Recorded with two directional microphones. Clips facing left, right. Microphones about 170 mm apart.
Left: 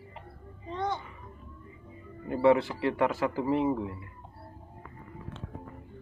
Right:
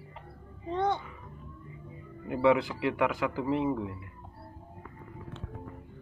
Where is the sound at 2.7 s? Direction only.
35° left (ahead or behind).